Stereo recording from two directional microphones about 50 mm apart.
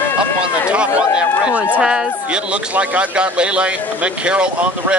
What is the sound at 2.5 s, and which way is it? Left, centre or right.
A man's voice, right.